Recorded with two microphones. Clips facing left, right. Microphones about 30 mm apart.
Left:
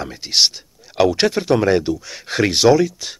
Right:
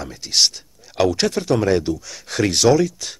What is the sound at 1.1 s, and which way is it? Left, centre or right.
Speech, left.